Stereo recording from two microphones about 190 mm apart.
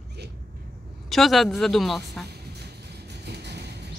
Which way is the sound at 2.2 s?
60° right (ahead or behind).